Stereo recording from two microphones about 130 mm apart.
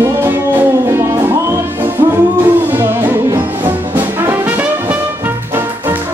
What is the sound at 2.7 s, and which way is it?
Music, 15° right (ahead or behind).